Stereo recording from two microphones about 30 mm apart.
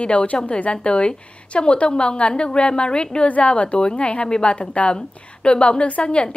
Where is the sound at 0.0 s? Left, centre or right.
Left.